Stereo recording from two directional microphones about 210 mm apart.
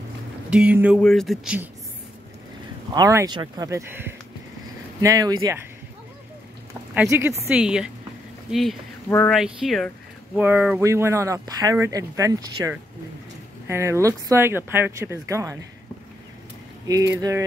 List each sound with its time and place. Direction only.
0.5 s speech: 5° right (ahead or behind)
2.9 s speech: 15° right (ahead or behind)
6.9 s speech: 10° right (ahead or behind)
16.8 s speech: 15° right (ahead or behind)